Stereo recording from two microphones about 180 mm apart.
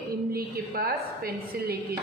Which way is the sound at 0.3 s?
55° right (ahead or behind).